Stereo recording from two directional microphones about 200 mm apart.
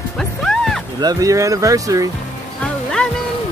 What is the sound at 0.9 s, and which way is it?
Speech, 20° right (ahead or behind).